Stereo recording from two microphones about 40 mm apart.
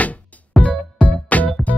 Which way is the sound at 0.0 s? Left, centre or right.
Left.